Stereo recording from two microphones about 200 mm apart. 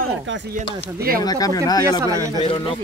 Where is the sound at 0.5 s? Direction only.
45° right (ahead or behind).